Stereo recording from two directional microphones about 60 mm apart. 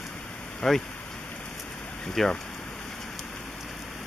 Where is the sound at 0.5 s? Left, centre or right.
Centre.